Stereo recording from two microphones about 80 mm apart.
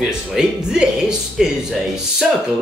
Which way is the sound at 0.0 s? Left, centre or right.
Centre.